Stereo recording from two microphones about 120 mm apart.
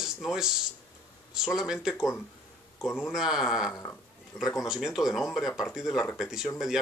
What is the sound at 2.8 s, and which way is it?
Speech, 20° left (ahead or behind).